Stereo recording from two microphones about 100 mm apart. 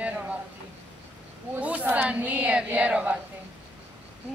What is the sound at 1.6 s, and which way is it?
A woman's voice, 15° right (ahead or behind).